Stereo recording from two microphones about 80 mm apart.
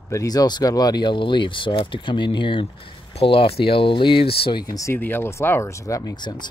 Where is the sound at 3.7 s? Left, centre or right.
Left.